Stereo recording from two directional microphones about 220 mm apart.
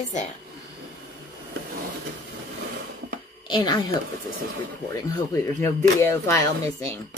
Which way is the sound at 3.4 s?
20° left (ahead or behind).